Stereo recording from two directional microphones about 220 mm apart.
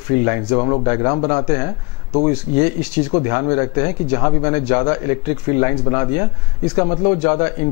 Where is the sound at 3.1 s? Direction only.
20° left (ahead or behind).